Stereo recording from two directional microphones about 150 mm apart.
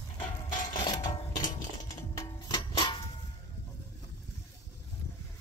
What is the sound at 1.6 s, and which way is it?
Music, 25° left (ahead or behind).